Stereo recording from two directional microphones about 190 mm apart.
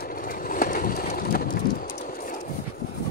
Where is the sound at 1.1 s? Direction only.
50° left (ahead or behind).